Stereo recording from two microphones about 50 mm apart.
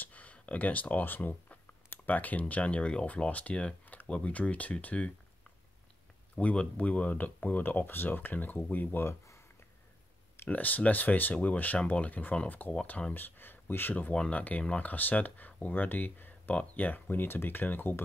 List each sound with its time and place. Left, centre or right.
0.0 s speech: left
3.3 s speech: left
3.8 s a sound: left
4.1 s speech: left
6.3 s speech: left
10.5 s speech: left
14.1 s speech: centre
14.9 s speech: left